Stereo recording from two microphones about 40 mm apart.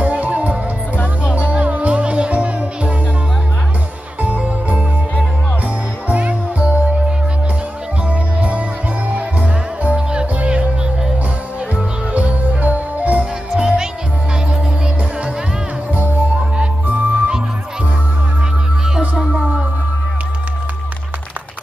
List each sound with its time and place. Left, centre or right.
0.0 s music: right
0.9 s music: left
1.3 s music: right
4.2 s music: right
6.0 s music: right
8.1 s music: right
10.3 s music: right
11.7 s music: right
13.6 s music: centre
15.9 s music: right
18.9 s music: centre